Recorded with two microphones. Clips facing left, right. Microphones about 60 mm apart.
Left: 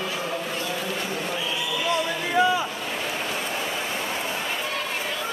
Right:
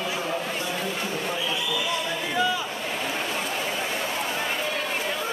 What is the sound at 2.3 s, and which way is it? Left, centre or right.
Boat, left.